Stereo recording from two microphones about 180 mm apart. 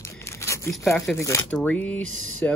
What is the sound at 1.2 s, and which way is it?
A man's voice, 15° left (ahead or behind).